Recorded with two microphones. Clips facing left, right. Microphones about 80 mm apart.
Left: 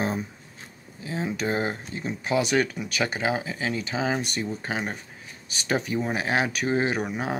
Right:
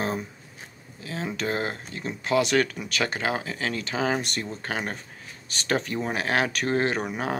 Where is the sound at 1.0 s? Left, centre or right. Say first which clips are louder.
Left 2 dB; centre.